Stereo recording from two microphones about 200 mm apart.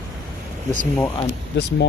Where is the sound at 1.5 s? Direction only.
60° left (ahead or behind).